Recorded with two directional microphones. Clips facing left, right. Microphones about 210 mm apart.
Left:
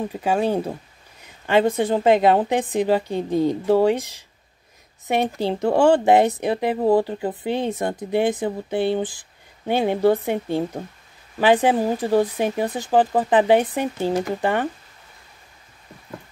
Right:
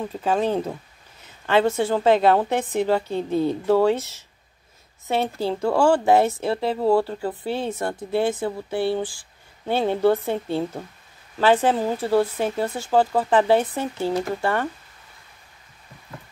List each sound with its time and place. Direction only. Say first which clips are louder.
0.0 s a woman's voice: left 1 dB; 15° left (ahead or behind)